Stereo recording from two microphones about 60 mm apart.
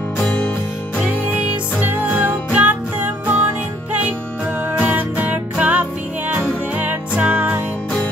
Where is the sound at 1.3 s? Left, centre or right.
Right.